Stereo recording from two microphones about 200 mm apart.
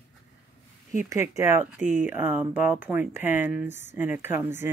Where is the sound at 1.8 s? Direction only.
40° left (ahead or behind).